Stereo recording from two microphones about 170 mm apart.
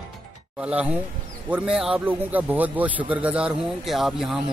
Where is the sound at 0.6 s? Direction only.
5° right (ahead or behind).